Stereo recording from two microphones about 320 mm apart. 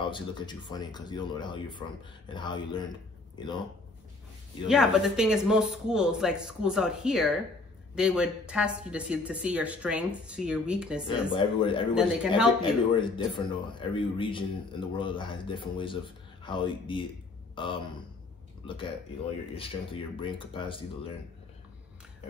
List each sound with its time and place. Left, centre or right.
0.0 s speech: centre
4.6 s a woman's voice: centre
11.1 s speech: centre
11.9 s a woman's voice: centre
12.6 s speech: centre
19.5 s speech: centre